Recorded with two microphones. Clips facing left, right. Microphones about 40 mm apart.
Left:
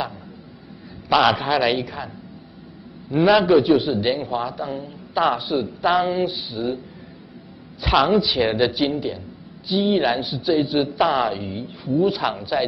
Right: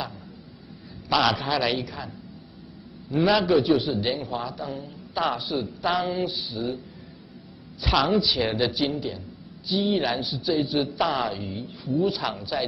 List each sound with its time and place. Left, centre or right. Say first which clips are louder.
1.0 s a man's voice: left 5 dB; centre
3.1 s a man's voice: left 5 dB; centre
7.8 s a man's voice: left 5 dB; centre
12.1 s a man's voice: left 5 dB; centre